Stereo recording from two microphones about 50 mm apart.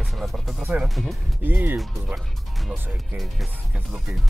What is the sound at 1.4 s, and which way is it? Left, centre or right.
Speech, right.